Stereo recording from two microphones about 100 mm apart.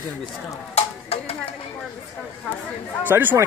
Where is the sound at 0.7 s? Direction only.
90° left.